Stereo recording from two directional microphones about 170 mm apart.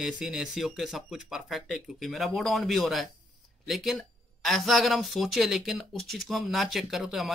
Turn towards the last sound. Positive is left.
turn(degrees=0)  # may be behind; listen again after turning